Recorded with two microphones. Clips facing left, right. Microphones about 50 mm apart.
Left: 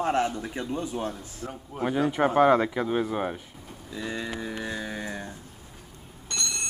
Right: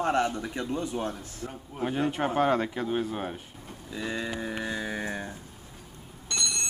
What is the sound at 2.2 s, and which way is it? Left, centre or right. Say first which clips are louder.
Speech: left 6 dB; centre.